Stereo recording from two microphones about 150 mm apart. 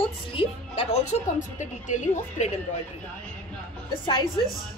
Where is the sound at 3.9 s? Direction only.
35° left (ahead or behind).